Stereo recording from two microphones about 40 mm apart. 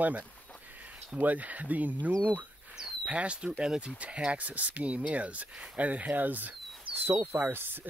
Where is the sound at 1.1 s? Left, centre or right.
Right.